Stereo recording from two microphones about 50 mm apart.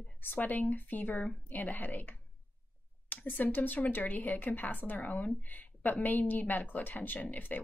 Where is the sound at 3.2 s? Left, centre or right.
Left.